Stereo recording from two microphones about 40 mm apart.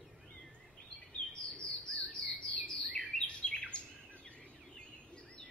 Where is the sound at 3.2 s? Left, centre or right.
Left.